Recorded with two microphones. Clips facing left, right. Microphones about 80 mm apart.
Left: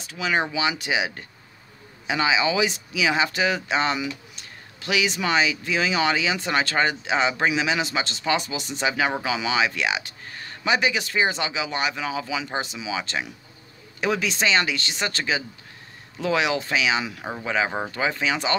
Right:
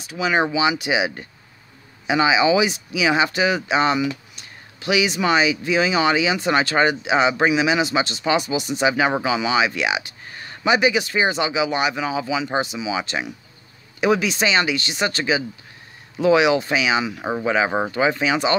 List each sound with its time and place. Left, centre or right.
0.0 s speech: centre
17.2 s speech: right
17.5 s speech: centre